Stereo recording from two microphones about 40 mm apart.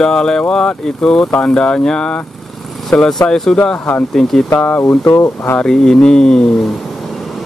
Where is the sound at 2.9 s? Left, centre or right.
Centre.